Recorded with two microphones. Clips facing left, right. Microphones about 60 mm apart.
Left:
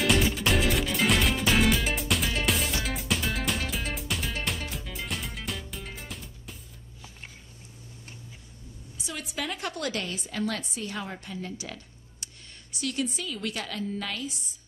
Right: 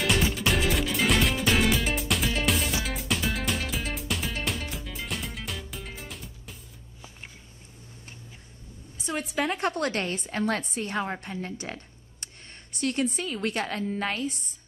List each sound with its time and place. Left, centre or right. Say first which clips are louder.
0.0 s music: left 1 dB; centre
9.5 s a woman's voice: right 5 dB; right